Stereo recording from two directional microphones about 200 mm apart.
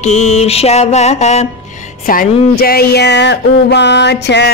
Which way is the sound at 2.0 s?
45° left (ahead or behind).